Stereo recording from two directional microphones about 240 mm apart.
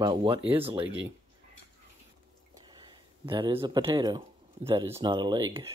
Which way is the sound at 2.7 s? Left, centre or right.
Centre.